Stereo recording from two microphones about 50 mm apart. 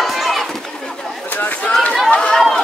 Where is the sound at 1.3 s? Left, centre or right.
Left.